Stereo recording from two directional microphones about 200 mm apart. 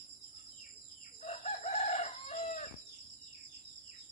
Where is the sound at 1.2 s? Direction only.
30° left (ahead or behind).